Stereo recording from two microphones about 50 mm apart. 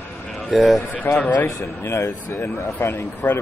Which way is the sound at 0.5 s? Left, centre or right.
Centre.